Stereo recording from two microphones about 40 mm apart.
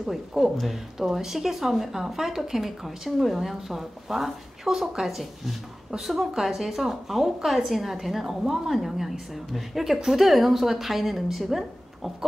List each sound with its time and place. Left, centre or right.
0.0 s a woman's voice: centre